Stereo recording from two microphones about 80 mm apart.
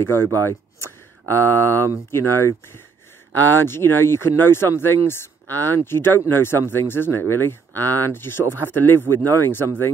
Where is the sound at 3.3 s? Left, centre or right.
Left.